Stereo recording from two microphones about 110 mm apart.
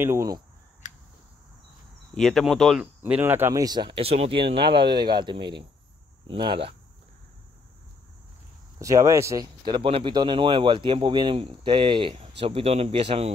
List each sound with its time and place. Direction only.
0.0 s speech: 25° right (ahead or behind)
2.1 s speech: 5° left (ahead or behind)
2.8 s speech: 15° right (ahead or behind)
3.5 s speech: 40° right (ahead or behind)
3.9 s speech: 65° right (ahead or behind)
4.3 s speech: 50° right (ahead or behind)
8.7 s speech: 30° right (ahead or behind)
9.7 s speech: 50° right (ahead or behind)